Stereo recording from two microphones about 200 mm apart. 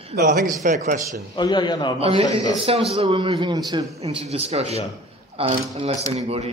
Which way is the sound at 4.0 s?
30° right (ahead or behind).